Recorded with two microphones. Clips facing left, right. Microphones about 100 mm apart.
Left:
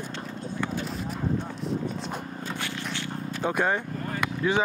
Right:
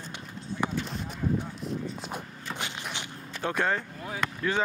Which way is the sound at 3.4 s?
10° left (ahead or behind).